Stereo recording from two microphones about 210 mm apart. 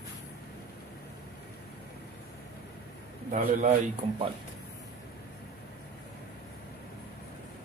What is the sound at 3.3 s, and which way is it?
Speech, 35° right (ahead or behind).